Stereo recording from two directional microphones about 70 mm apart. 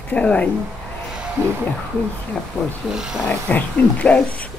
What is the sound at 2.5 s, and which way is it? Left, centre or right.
Speech, left.